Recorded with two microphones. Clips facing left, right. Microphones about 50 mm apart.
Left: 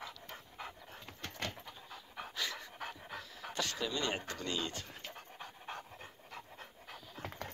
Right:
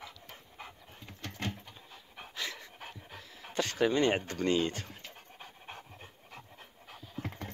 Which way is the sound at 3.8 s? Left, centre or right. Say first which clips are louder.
Right 13 dB; right.